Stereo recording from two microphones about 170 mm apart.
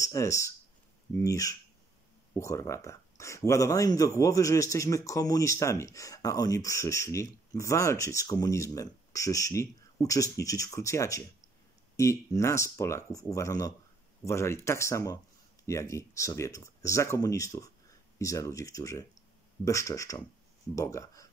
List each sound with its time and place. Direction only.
0.0 s speech: 20° left (ahead or behind)